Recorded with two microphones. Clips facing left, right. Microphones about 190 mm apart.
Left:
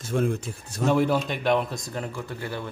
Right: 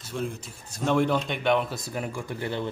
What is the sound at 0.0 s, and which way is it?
Speech, 55° left (ahead or behind).